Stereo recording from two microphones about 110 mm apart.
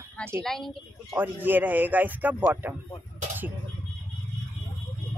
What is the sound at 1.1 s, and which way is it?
Speech, 15° right (ahead or behind).